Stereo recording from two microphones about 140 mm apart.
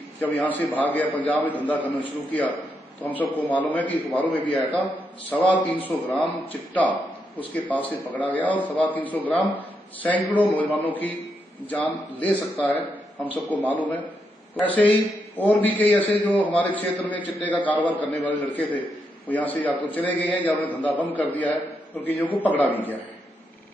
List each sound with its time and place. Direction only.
0.2 s a man's voice: 10° left (ahead or behind)
3.1 s a man's voice: 10° left (ahead or behind)